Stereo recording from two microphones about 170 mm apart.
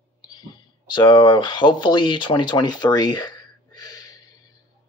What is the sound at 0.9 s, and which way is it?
Speech, 25° left (ahead or behind).